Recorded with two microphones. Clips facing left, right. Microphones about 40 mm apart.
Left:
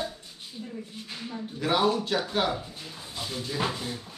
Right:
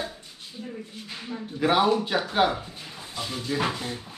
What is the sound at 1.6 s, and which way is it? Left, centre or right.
Speech, centre.